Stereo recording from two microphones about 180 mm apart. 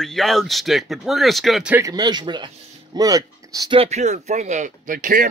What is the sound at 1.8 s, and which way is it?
Speech, 20° right (ahead or behind).